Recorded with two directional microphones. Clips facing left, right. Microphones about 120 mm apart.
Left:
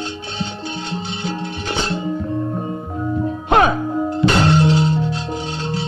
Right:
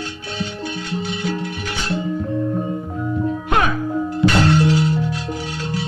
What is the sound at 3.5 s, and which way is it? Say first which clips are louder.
Music: left 6 dB; 25° left (ahead or behind).